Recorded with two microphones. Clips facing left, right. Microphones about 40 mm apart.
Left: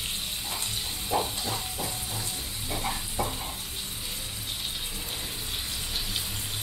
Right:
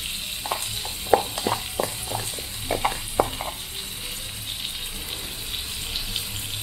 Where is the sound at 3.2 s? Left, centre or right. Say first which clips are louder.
Right 8 dB; right.